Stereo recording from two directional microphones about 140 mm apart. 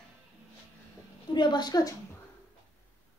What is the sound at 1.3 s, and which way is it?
Speech, 30° left (ahead or behind).